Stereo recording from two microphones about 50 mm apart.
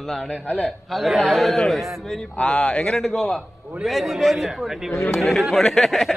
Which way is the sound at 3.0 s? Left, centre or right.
Centre.